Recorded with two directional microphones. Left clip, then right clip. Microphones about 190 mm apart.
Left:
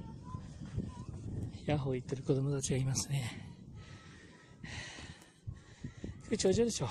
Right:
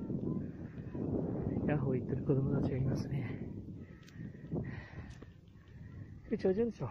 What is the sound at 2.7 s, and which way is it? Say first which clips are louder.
Speech: left 1 dB; 40° left (ahead or behind).